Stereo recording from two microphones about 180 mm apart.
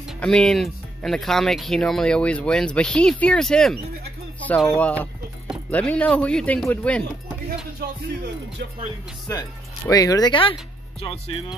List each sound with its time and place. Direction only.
0.2 s speech: 5° left (ahead or behind)
9.3 s speech: 20° left (ahead or behind)